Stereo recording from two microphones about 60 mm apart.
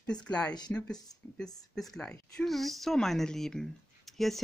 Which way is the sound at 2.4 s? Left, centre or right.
Centre.